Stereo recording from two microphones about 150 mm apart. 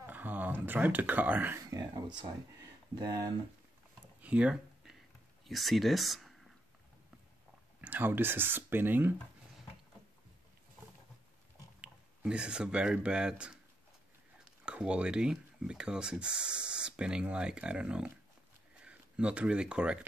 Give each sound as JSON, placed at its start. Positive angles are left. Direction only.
{"t": 0.0, "sound": "speech", "side_deg": -10}
{"t": 1.7, "sound": "speech", "side_deg": -25}
{"t": 4.2, "sound": "a sound", "side_deg": -10}
{"t": 5.4, "sound": "speech", "side_deg": 0}
{"t": 7.8, "sound": "speech", "side_deg": -10}
{"t": 11.8, "sound": "speech", "side_deg": -5}